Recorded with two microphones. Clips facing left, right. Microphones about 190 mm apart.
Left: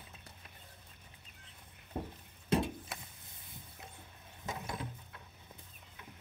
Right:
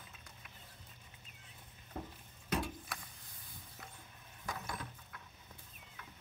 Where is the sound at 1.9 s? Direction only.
30° left (ahead or behind).